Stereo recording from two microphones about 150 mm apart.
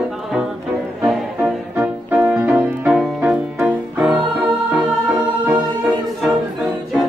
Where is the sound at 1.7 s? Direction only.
10° right (ahead or behind).